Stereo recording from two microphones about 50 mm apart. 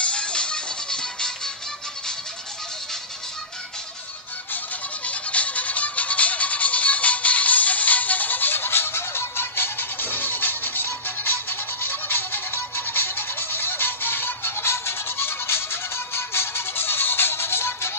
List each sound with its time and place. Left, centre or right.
0.0 s music: left
5.0 s music: left